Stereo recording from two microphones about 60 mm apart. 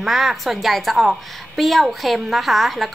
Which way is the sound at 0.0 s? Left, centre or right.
Centre.